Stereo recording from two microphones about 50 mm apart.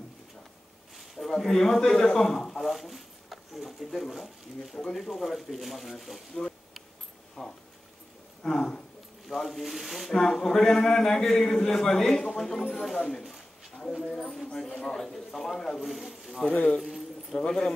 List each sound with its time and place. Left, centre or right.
1.1 s speech: centre
6.3 s a sound: centre
7.4 s speech: centre
14.0 s speech: centre
16.4 s speech: left
16.8 s a sound: centre
17.4 s speech: centre